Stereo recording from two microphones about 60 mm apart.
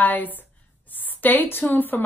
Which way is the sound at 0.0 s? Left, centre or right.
Left.